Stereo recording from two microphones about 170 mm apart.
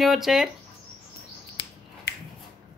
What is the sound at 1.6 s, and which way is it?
Finger snapping, 90° left.